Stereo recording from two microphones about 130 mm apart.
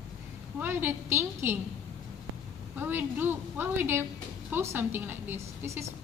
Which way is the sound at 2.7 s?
15° right (ahead or behind).